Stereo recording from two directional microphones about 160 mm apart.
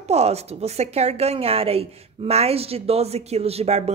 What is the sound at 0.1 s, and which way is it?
Speech, 40° right (ahead or behind).